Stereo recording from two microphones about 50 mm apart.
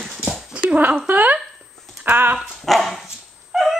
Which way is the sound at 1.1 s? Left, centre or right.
Right.